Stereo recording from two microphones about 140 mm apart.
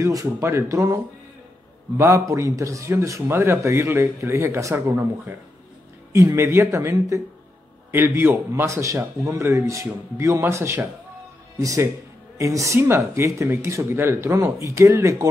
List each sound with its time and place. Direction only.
0.0 s speech: 20° right (ahead or behind)
2.0 s speech: 20° right (ahead or behind)